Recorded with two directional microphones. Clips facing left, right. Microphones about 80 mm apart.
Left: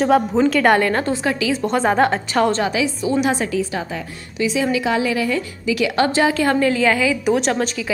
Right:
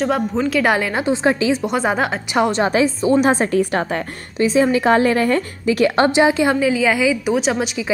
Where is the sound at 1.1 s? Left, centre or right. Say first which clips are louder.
Right 3 dB; right.